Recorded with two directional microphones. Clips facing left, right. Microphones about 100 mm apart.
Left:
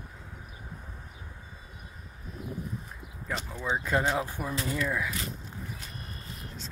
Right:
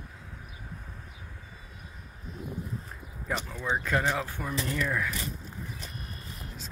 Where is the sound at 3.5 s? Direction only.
15° left (ahead or behind).